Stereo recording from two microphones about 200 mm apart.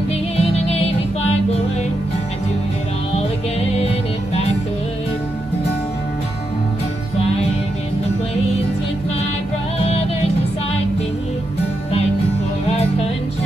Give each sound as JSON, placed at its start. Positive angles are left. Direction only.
{"t": 0.4, "sound": "music", "side_deg": 30}
{"t": 3.7, "sound": "music", "side_deg": 30}
{"t": 9.8, "sound": "music", "side_deg": 30}
{"t": 12.6, "sound": "music", "side_deg": 30}